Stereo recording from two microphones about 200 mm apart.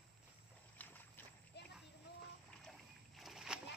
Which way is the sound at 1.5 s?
55° left (ahead or behind).